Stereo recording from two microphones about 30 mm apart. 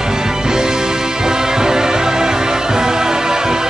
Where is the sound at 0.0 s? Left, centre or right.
Right.